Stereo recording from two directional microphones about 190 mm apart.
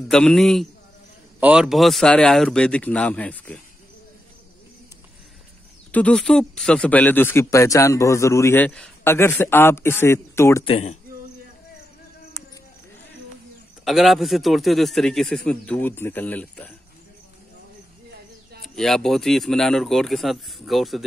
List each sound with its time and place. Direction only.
0.1 s speech: 5° left (ahead or behind)
5.9 s a man's voice: 5° left (ahead or behind)
10.6 s speech: 35° left (ahead or behind)
13.8 s speech: centre (ahead or behind)
18.8 s speech: centre (ahead or behind)